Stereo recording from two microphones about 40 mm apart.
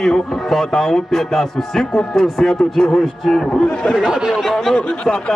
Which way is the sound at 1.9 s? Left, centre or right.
Left.